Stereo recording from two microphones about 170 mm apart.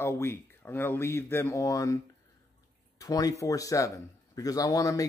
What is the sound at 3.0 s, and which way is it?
Speech, 20° left (ahead or behind).